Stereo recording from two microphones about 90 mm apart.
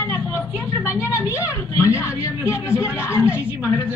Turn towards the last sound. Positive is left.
turn(degrees=30)  # may be behind; listen again after turning